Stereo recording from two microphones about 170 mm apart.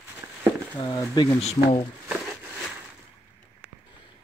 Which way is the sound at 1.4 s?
35° left (ahead or behind).